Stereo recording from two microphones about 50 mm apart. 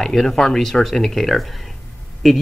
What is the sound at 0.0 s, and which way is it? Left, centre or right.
Speech, centre.